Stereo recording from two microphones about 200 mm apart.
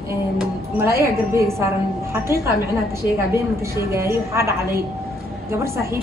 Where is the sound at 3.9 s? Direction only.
15° right (ahead or behind).